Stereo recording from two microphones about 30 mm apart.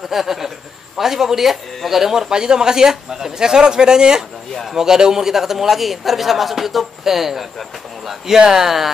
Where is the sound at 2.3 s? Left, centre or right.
Right; by 8.1 s centre.